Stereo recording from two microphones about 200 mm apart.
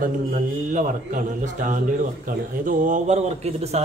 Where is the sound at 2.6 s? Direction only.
40° right (ahead or behind).